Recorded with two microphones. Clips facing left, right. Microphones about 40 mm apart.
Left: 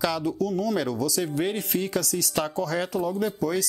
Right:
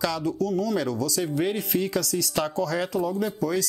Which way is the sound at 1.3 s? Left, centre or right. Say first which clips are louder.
Right 1 dB; left.